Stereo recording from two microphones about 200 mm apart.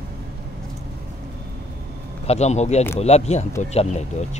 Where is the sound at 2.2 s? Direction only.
35° left (ahead or behind).